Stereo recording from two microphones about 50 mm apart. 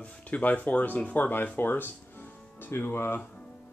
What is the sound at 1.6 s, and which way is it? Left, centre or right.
Speech, left.